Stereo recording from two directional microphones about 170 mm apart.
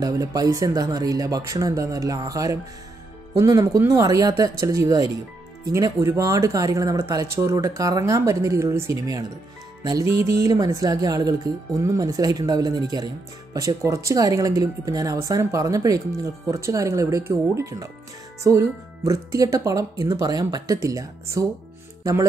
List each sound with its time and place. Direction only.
0.0 s speech: 20° right (ahead or behind)